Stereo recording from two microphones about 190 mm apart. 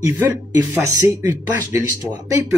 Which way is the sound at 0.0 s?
15° right (ahead or behind).